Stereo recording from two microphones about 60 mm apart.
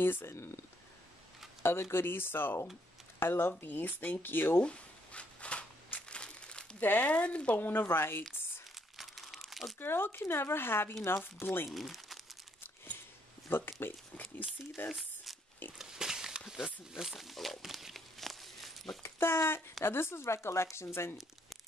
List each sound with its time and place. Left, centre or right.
0.0 s speech: left
1.6 s speech: left
4.6 s zipper: centre
5.9 s crumpling: centre
6.8 s speech: left
7.8 s speech: left
8.9 s crumpling: centre
9.8 s speech: left
11.7 s speech: centre
13.5 s speech: left
15.8 s a sound: centre
16.9 s crumpling: centre
19.0 s speech: left